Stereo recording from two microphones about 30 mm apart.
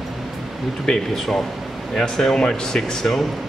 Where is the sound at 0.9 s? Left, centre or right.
Centre; by 2.8 s left.